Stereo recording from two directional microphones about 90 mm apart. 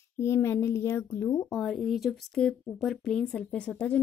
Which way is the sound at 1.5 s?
5° left (ahead or behind).